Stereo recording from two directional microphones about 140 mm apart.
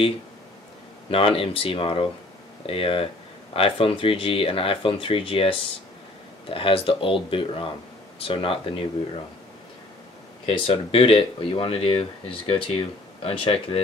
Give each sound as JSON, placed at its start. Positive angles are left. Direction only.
{"t": 1.1, "sound": "speech", "side_deg": 40}
{"t": 10.4, "sound": "speech", "side_deg": 45}